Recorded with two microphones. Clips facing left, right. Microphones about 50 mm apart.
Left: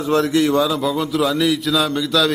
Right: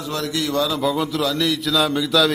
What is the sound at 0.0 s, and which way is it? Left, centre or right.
Speech, left.